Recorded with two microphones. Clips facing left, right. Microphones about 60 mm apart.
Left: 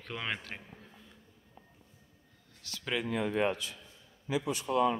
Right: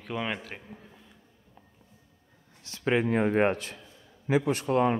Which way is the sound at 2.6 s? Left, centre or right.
Right.